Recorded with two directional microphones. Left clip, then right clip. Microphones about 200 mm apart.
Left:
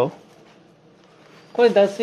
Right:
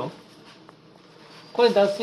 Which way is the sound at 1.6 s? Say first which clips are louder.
Left 3 dB; 30° left (ahead or behind).